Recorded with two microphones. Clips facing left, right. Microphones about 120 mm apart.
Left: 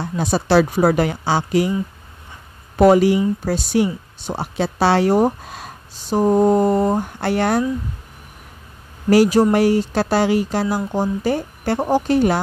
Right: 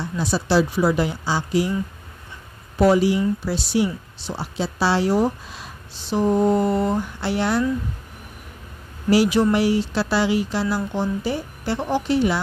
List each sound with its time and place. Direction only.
0.2 s speech: 55° left (ahead or behind)
2.8 s speech: 55° left (ahead or behind)
9.1 s speech: 45° left (ahead or behind)